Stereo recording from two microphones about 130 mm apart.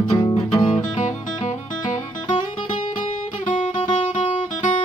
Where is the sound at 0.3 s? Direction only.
45° left (ahead or behind).